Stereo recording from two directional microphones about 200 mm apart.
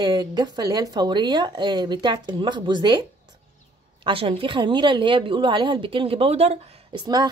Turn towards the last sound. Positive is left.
turn(degrees=-30)  # may be behind; listen again after turning